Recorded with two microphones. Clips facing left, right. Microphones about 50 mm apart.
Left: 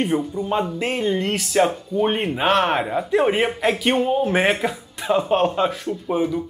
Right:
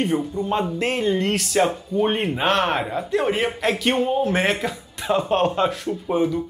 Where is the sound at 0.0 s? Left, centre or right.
Centre.